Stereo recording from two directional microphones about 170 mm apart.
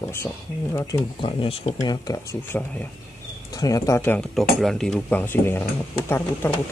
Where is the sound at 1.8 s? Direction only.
20° left (ahead or behind).